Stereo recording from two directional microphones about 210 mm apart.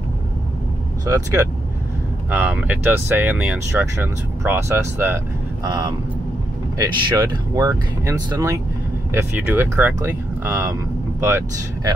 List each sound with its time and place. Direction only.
1.0 s speech: 15° right (ahead or behind)